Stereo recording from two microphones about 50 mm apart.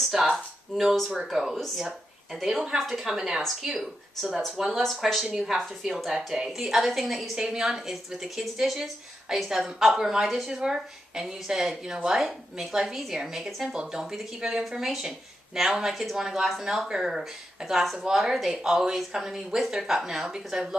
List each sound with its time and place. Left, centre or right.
0.0 s a sound: centre
1.2 s a woman's voice: centre
2.5 s a woman's voice: centre
4.3 s speech: centre
4.6 s a woman's voice: centre
7.3 s a woman's voice: centre